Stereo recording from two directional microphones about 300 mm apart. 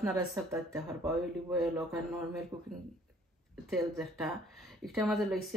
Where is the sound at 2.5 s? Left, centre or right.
Centre.